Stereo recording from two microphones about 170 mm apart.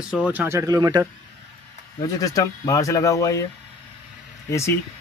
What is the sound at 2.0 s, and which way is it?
Speech, 20° left (ahead or behind).